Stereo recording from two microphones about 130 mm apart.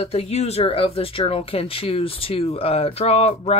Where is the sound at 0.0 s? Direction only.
55° left (ahead or behind).